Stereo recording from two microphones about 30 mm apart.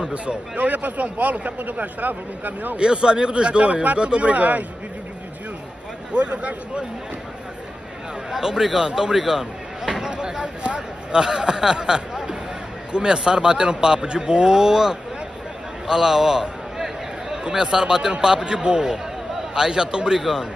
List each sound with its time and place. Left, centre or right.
0.6 s speech: right
2.8 s a man's voice: right
6.1 s a man's voice: right
8.3 s speech: centre
9.1 s a sound: centre; by 11.1 s right
11.1 s speech: right
15.9 s a sound: centre
17.8 s speech: right
20.2 s speech: centre